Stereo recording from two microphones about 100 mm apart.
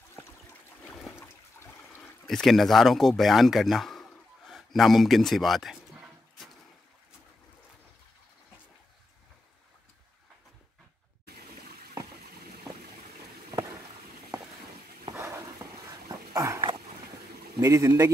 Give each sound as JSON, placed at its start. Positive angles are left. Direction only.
{"t": 2.2, "sound": "speech", "side_deg": 0}
{"t": 15.1, "sound": "dog", "side_deg": -25}
{"t": 17.6, "sound": "speech", "side_deg": -30}